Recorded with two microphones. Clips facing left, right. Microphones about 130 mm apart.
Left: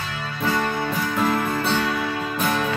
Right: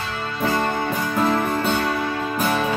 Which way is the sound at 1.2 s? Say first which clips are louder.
Right 2 dB; 25° right (ahead or behind).